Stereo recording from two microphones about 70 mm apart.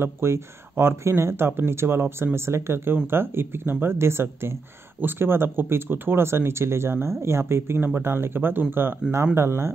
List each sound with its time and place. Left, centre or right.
0.0 s speech: right